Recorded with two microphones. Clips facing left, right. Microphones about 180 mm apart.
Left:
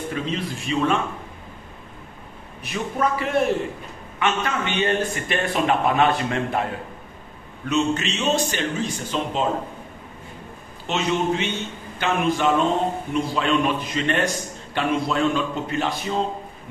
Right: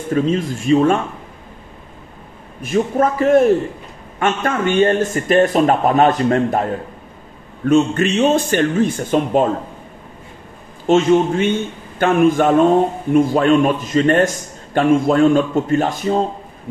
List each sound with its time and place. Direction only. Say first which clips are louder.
0.1 s a man's voice: right 14 dB; 45° right (ahead or behind)
2.6 s a man's voice: right 8 dB; 45° right (ahead or behind)
10.9 s a man's voice: right 9 dB; 45° right (ahead or behind)